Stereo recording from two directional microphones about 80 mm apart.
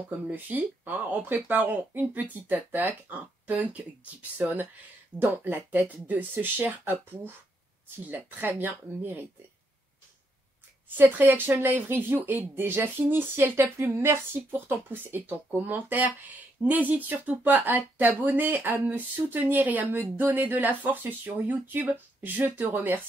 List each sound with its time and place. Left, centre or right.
0.3 s speech: right
11.0 s speech: right